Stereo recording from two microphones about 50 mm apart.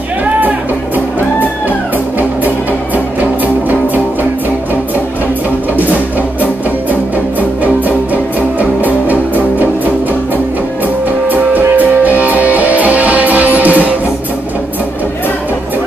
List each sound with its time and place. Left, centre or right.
3.2 s music: right
6.9 s music: right
11.2 s music: right